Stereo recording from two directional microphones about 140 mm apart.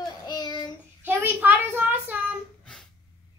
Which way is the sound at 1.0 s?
15° right (ahead or behind).